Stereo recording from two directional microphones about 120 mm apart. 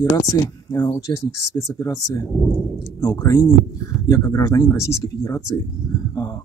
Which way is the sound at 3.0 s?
25° left (ahead or behind).